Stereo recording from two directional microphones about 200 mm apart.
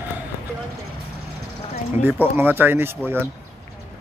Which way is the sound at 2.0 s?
10° right (ahead or behind).